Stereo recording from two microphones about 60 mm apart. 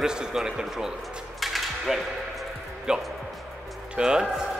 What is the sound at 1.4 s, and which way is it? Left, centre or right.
Mechanisms, centre.